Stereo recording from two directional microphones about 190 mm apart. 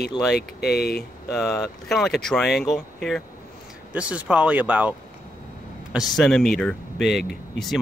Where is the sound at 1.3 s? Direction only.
Centre (ahead or behind).